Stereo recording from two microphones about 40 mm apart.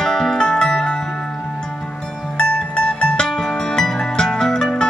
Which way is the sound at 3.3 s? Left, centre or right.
Centre.